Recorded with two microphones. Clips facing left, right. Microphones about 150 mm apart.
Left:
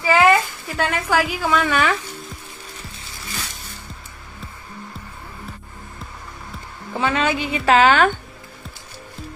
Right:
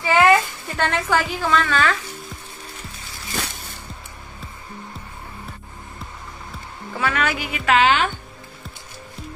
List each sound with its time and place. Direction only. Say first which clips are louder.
0.0 s a woman's voice: even; centre (ahead or behind)
7.0 s a woman's voice: left 3 dB; 25° left (ahead or behind); by 8.1 s 45° left (ahead or behind)